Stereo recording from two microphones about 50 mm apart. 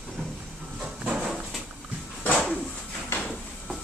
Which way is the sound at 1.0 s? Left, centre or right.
Centre.